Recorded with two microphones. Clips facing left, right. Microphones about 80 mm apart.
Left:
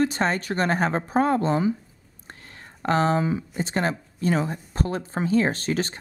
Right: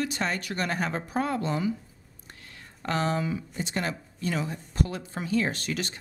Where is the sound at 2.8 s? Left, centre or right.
Left.